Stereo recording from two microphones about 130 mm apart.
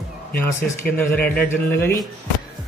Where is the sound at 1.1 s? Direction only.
15° left (ahead or behind).